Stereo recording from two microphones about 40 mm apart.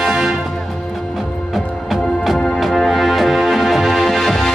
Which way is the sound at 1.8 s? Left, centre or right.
Centre.